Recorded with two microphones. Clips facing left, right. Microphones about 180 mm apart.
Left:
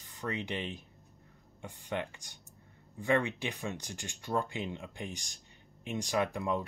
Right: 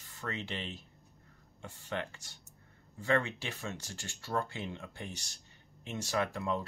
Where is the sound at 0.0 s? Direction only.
15° left (ahead or behind).